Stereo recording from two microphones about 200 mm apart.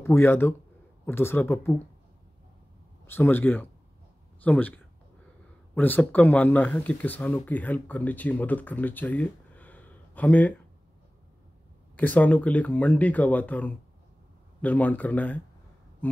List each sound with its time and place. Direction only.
0.0 s speech: 10° left (ahead or behind)
3.1 s speech: 10° left (ahead or behind)
12.0 s speech: 5° left (ahead or behind)
16.0 s a sound: 10° left (ahead or behind)